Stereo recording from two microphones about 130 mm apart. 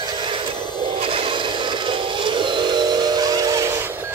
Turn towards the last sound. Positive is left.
turn(degrees=-30)  # may be behind; listen again after turning